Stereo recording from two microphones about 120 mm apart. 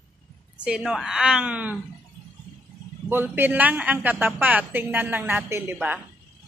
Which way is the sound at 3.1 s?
20° right (ahead or behind).